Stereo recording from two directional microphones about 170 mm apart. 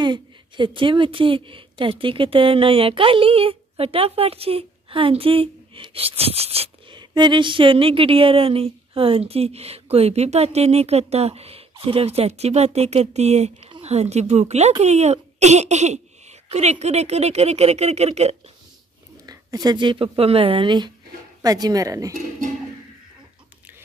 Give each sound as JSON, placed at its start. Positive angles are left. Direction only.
{"t": 0.0, "sound": "a woman's voice", "side_deg": -25}
{"t": 19.2, "sound": "speech", "side_deg": -25}